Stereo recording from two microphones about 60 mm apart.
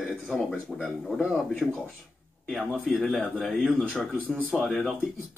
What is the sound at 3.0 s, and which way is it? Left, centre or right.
Speech, centre.